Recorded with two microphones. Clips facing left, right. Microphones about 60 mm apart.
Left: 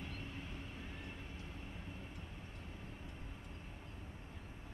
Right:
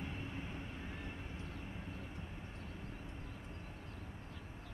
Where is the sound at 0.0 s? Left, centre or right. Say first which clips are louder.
Right 3 dB; centre.